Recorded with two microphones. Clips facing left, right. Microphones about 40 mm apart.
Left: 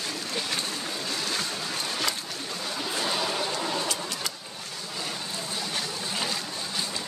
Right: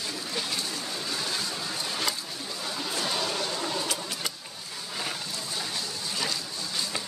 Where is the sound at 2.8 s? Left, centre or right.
Centre.